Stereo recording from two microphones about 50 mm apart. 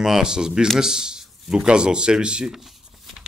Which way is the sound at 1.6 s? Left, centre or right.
Centre.